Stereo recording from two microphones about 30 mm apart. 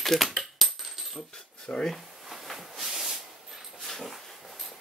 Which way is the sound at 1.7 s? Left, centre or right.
Left.